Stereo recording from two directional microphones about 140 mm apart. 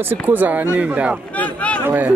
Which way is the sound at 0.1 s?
15° right (ahead or behind).